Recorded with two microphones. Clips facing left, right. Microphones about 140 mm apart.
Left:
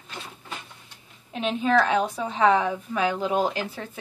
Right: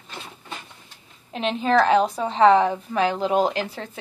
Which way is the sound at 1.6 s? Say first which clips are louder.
Right 4 dB; 35° right (ahead or behind).